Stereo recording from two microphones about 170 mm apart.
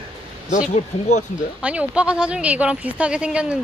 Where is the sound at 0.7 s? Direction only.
45° left (ahead or behind).